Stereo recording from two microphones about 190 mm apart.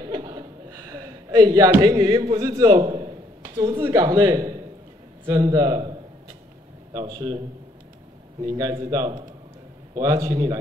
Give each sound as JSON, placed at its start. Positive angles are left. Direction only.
{"t": 0.0, "sound": "chuckle", "side_deg": -25}
{"t": 5.2, "sound": "a sound", "side_deg": -20}
{"t": 6.9, "sound": "a man's voice", "side_deg": -20}